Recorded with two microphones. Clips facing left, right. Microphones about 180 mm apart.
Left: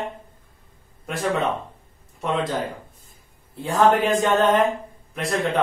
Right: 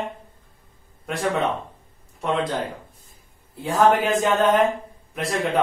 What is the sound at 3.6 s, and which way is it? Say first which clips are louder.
Speech: even; centre (ahead or behind).